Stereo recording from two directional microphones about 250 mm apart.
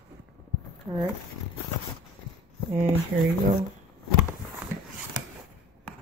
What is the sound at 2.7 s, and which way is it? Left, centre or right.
Speech, right.